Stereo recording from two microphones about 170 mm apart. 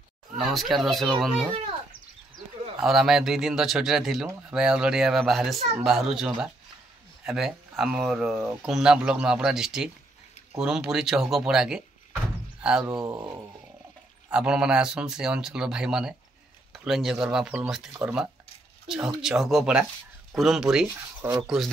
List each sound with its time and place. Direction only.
0.5 s speech: centre (ahead or behind)
2.8 s speech: centre (ahead or behind)
13.0 s speech: 15° right (ahead or behind)
14.3 s speech: 5° right (ahead or behind)
21.2 s speech: 15° right (ahead or behind)